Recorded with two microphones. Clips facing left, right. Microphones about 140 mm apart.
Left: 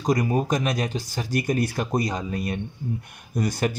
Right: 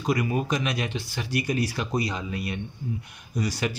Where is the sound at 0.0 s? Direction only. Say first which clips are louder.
Left 3 dB; 40° left (ahead or behind).